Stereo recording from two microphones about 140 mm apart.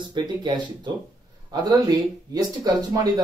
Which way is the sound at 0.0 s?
30° right (ahead or behind).